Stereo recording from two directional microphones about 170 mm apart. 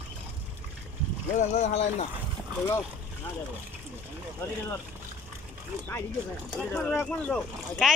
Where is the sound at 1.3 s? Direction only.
45° left (ahead or behind).